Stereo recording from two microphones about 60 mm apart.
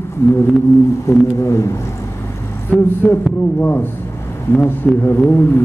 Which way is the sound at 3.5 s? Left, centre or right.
Left.